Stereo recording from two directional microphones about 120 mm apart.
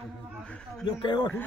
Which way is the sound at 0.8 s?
40° left (ahead or behind).